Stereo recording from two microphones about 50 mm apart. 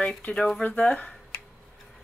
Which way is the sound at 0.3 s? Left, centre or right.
Centre.